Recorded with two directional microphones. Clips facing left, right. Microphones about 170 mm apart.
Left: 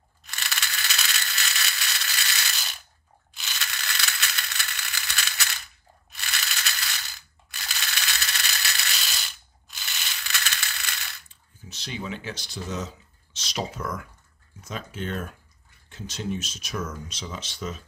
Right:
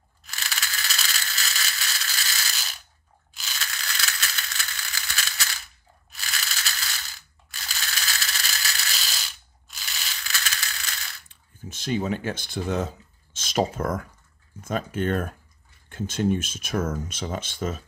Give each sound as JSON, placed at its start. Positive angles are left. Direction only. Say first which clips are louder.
{"t": 0.2, "sound": "ratchet", "louder": "even", "side_deg": 0}
{"t": 3.3, "sound": "rattle", "louder": "even", "side_deg": 0}
{"t": 7.4, "sound": "ratchet", "louder": "even", "side_deg": 0}
{"t": 9.7, "sound": "crushing", "louder": "even", "side_deg": 0}
{"t": 11.2, "sound": "a sound", "louder": "right 6 dB", "side_deg": -50}
{"t": 14.6, "sound": "speech", "louder": "right 7 dB", "side_deg": -50}